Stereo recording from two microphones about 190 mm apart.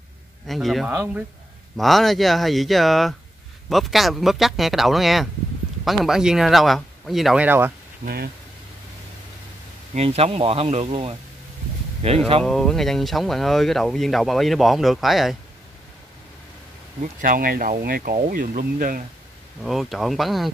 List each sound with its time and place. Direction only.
0.5 s speech: centre (ahead or behind)
0.9 s speech: 10° right (ahead or behind)
1.8 s speech: centre (ahead or behind)
8.0 s speech: 55° right (ahead or behind)
9.9 s speech: 35° right (ahead or behind)
12.4 s speech: centre (ahead or behind)
17.0 s speech: 45° right (ahead or behind)
19.6 s speech: centre (ahead or behind)